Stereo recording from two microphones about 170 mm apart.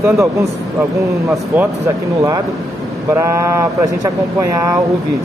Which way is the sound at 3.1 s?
15° right (ahead or behind).